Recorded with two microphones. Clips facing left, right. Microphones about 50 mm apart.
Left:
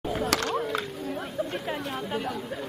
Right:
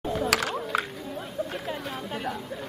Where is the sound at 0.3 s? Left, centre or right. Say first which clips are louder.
Even; centre.